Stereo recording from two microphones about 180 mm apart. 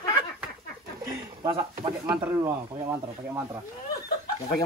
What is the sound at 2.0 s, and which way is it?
Speech, 15° right (ahead or behind).